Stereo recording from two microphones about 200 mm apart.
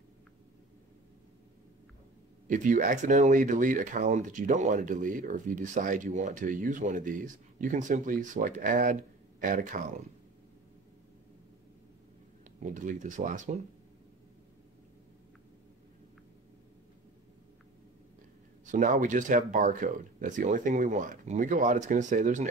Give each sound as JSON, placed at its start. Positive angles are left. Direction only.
{"t": 2.4, "sound": "speech", "side_deg": -40}
{"t": 12.7, "sound": "speech", "side_deg": -40}
{"t": 18.7, "sound": "speech", "side_deg": -40}